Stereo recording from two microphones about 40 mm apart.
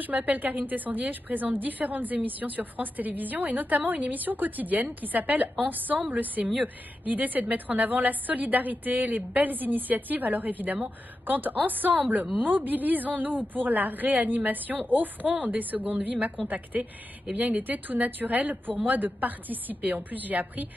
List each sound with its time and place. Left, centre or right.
0.0 s a woman's voice: right